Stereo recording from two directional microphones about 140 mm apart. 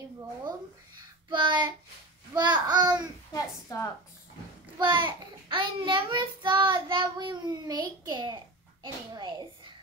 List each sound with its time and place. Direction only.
1.3 s child singing: 35° right (ahead or behind)
2.3 s a child's voice: 30° right (ahead or behind)
3.3 s a woman's voice: 20° left (ahead or behind)
4.7 s child singing: 35° right (ahead or behind)